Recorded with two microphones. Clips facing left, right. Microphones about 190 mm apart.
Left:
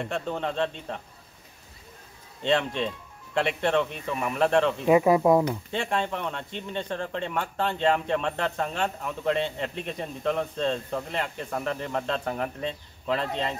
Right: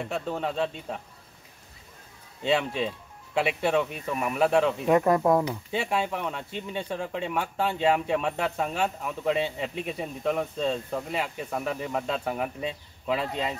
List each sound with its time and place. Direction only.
0.0 s speech: 5° right (ahead or behind)
2.4 s speech: 5° right (ahead or behind)
4.9 s speech: 5° left (ahead or behind)
5.7 s speech: 5° right (ahead or behind)